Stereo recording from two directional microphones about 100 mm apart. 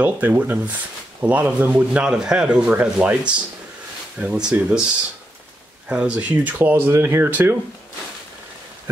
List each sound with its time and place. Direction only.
0.0 s speech: 15° right (ahead or behind)
5.9 s speech: 10° right (ahead or behind)